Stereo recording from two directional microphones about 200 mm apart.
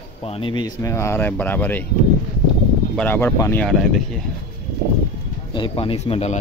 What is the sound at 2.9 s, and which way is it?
A man's voice, 10° left (ahead or behind).